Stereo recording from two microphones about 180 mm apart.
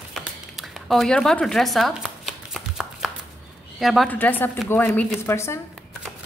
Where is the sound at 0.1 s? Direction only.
Centre (ahead or behind).